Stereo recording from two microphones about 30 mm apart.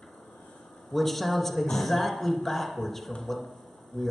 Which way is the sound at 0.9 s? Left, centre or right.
Centre.